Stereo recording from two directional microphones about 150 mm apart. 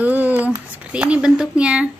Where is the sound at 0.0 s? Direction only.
10° right (ahead or behind).